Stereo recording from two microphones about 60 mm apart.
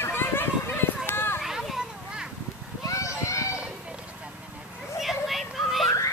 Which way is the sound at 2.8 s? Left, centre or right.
Left.